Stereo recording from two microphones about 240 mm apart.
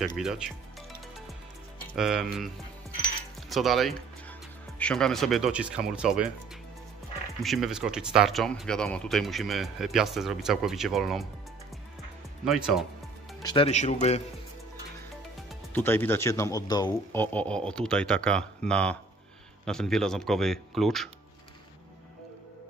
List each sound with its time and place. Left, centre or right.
0.2 s speech: centre
2.0 s speech: centre
3.4 s speech: centre
7.4 s speech: centre
12.4 s speech: centre
13.4 s speech: centre
13.7 s speech: left
15.7 s speech: centre